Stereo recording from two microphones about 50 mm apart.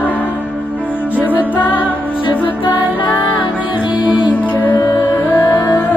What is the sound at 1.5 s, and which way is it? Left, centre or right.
Music, left.